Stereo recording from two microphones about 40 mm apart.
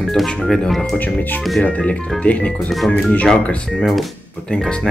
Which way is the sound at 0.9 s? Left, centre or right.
Left.